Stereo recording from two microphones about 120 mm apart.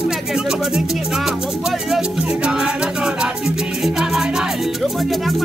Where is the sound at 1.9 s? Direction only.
5° right (ahead or behind).